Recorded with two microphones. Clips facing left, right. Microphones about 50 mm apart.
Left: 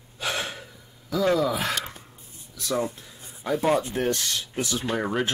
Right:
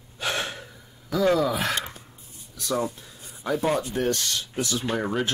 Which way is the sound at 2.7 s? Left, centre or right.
Left.